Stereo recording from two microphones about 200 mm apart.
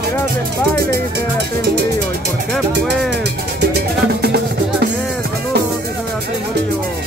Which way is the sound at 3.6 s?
55° right (ahead or behind).